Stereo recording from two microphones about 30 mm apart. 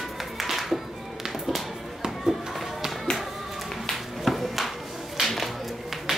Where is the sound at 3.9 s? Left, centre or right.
Centre.